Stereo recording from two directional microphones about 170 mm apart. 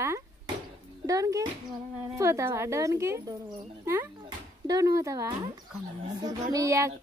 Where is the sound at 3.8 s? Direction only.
15° right (ahead or behind).